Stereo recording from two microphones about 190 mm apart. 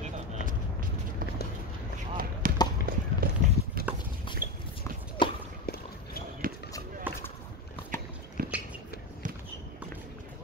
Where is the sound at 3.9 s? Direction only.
10° right (ahead or behind).